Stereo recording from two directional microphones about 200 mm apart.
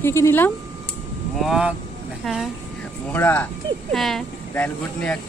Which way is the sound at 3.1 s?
10° left (ahead or behind).